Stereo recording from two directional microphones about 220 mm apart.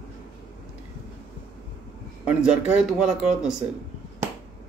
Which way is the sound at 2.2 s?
5° right (ahead or behind).